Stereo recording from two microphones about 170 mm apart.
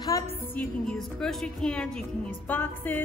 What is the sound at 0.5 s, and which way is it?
A woman's voice, 5° left (ahead or behind).